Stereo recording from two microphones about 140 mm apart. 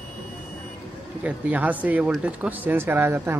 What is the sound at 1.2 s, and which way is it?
Speech, 10° right (ahead or behind).